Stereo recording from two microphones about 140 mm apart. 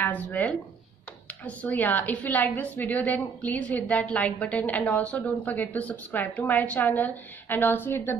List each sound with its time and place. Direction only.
0.0 s a woman's voice: 10° left (ahead or behind)